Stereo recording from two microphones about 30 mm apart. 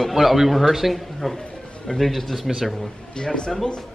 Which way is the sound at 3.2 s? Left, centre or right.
Left.